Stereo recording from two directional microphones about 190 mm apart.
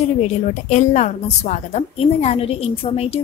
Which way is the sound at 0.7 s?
40° left (ahead or behind).